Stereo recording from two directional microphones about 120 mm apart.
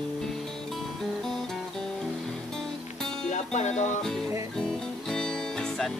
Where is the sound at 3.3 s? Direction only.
75° left (ahead or behind).